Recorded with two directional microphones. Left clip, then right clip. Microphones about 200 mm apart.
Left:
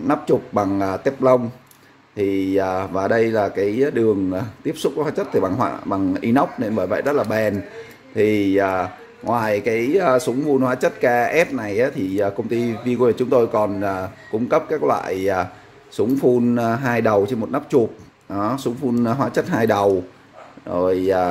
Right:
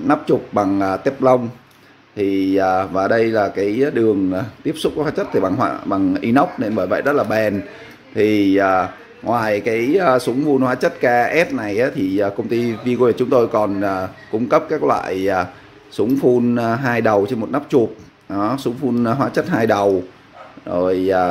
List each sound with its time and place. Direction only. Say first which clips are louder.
0.0 s speech: right 2 dB; 5° left (ahead or behind)